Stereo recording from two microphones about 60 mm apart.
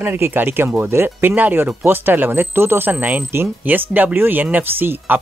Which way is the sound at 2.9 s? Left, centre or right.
Right.